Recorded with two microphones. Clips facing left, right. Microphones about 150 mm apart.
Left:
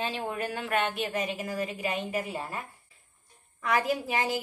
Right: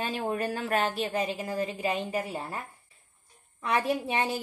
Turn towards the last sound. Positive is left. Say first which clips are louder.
# even
turn(degrees=-30)  # may be behind; listen again after turning